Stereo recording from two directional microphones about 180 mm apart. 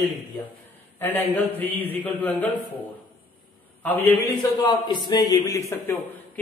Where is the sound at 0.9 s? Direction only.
10° left (ahead or behind).